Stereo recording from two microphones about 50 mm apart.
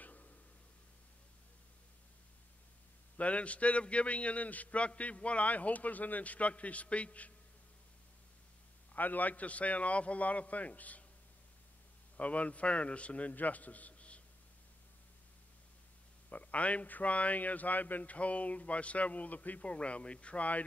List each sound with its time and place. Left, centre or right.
0.0 s a sound: left
3.2 s a man's voice: left
8.9 s a man's voice: left
12.2 s a man's voice: left
16.3 s a man's voice: left